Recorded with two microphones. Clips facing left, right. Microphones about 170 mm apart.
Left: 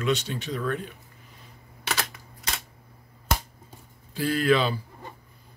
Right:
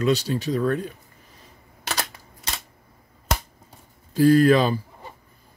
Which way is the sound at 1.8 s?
30° right (ahead or behind).